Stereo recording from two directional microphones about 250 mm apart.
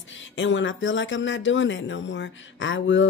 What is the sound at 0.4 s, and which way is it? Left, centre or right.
Speech, left.